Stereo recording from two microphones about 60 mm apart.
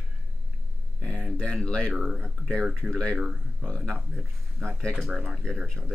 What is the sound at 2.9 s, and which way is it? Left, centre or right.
Speech, centre.